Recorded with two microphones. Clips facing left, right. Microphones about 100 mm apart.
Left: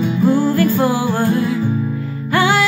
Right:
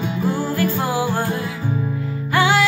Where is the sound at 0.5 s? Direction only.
10° right (ahead or behind).